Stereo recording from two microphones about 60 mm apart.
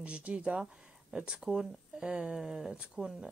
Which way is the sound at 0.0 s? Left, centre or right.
Centre.